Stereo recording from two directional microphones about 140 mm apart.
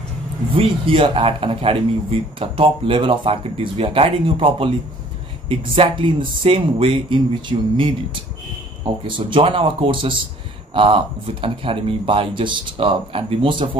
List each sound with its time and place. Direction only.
0.5 s a man's voice: 40° right (ahead or behind)